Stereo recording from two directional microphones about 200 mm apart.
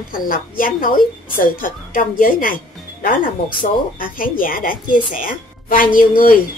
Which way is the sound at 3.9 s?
45° left (ahead or behind).